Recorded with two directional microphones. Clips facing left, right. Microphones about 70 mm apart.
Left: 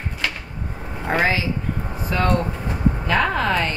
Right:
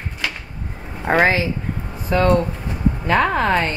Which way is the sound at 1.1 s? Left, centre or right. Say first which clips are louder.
Right 4 dB; right.